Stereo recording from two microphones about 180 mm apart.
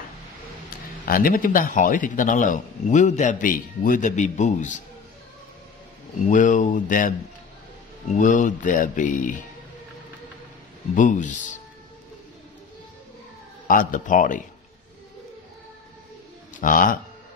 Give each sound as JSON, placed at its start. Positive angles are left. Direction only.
{"t": 1.0, "sound": "a man's voice", "side_deg": 55}
{"t": 6.3, "sound": "a man's voice", "side_deg": 45}
{"t": 11.0, "sound": "a man's voice", "side_deg": 45}
{"t": 13.7, "sound": "a man's voice", "side_deg": 45}
{"t": 16.6, "sound": "a man's voice", "side_deg": 50}